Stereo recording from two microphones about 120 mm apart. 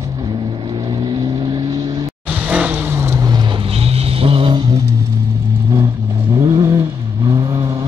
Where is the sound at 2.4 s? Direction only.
15° right (ahead or behind).